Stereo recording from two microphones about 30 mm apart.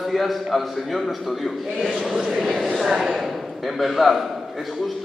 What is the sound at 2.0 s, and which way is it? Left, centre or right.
Speech, centre.